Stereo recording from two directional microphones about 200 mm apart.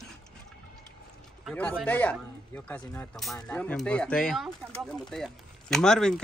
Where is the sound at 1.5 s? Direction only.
5° left (ahead or behind).